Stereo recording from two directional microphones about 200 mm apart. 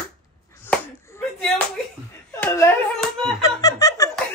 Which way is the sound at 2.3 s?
10° left (ahead or behind).